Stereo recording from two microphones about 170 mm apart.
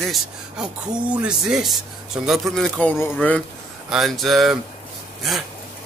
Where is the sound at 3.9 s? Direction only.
Centre (ahead or behind).